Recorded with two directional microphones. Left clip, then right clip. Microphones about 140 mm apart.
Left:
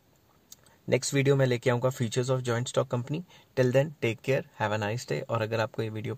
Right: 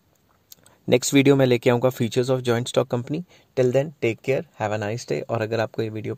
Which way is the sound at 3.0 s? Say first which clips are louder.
Right 7 dB; 35° right (ahead or behind).